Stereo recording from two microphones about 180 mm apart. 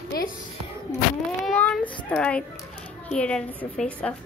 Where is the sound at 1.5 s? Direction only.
10° left (ahead or behind).